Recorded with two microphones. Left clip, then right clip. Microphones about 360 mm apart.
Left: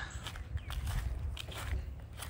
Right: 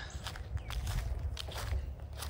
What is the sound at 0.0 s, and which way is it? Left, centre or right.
Walk, centre.